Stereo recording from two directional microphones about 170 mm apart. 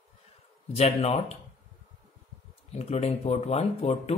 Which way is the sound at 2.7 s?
40° left (ahead or behind).